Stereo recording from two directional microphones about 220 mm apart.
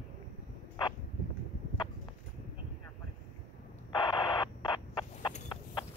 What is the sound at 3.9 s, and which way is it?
Radio, 20° left (ahead or behind).